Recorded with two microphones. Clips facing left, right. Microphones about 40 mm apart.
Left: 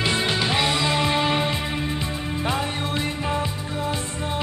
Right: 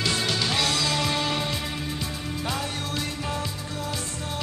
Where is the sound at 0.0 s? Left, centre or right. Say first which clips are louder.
Left 3 dB; left.